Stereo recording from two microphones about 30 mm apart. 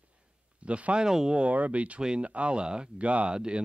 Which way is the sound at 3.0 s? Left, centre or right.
Right.